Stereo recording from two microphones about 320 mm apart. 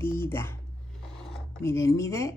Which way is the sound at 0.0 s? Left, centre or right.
Centre.